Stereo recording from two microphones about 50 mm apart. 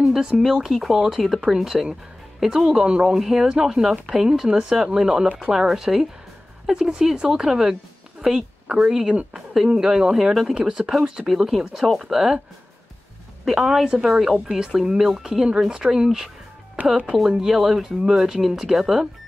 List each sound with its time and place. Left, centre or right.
0.0 s speech: centre
13.5 s speech: centre; by 17.2 s right
17.3 s speech: centre